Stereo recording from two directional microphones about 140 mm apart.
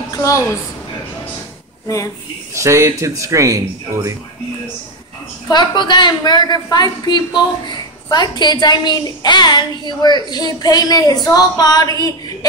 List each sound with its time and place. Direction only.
0.1 s a woman's voice: 20° left (ahead or behind)
2.5 s speech: 20° right (ahead or behind)
5.5 s a woman's voice: 30° left (ahead or behind)